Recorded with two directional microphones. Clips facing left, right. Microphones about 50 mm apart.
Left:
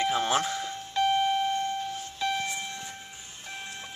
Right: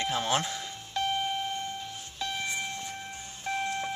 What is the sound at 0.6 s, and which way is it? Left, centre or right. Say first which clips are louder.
Doorbell: left 5 dB; centre.